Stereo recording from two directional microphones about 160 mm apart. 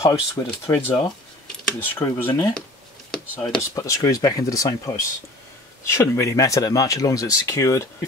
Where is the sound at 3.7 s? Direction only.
20° left (ahead or behind).